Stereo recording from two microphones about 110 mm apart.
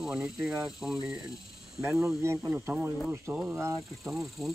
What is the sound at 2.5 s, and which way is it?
Speech, 25° right (ahead or behind).